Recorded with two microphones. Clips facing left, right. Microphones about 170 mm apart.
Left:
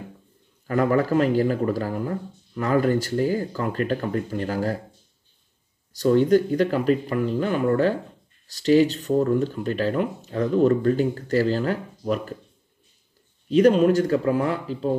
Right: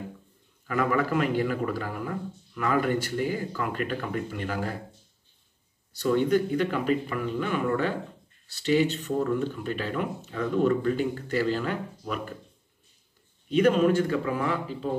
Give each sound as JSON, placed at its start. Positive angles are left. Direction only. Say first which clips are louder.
{"t": 0.7, "sound": "speech", "louder": "left 5 dB", "side_deg": 35}
{"t": 6.0, "sound": "speech", "louder": "left 5 dB", "side_deg": 35}
{"t": 13.6, "sound": "speech", "louder": "left 4 dB", "side_deg": 35}